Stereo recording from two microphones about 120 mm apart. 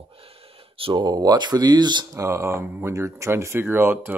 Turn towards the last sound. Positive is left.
turn(degrees=-20)  # may be behind; listen again after turning